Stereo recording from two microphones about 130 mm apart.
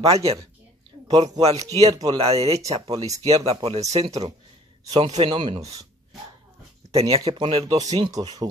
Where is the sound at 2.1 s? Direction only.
50° right (ahead or behind).